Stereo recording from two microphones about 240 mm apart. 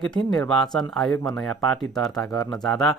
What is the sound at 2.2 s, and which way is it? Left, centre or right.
Speech, centre.